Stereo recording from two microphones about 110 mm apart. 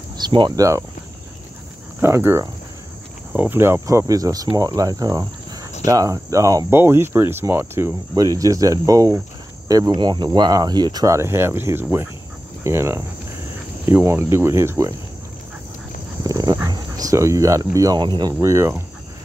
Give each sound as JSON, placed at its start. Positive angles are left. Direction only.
{"t": 0.2, "sound": "speech", "side_deg": -40}
{"t": 2.0, "sound": "speech", "side_deg": -25}
{"t": 16.3, "sound": "dog", "side_deg": -35}
{"t": 16.6, "sound": "speech", "side_deg": -35}
{"t": 18.4, "sound": "speech", "side_deg": -25}